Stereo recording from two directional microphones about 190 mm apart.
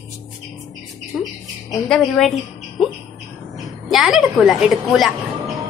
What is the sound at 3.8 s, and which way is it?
A woman's voice, centre (ahead or behind).